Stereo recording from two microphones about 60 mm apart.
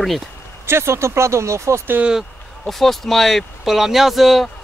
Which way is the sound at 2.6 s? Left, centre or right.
Centre.